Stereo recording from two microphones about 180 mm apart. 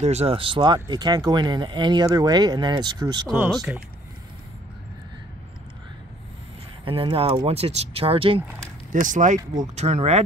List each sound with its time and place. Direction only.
0.0 s speech: 35° right (ahead or behind)
3.3 s speech: 5° right (ahead or behind)
6.8 s speech: 30° right (ahead or behind)
9.0 s speech: 45° right (ahead or behind)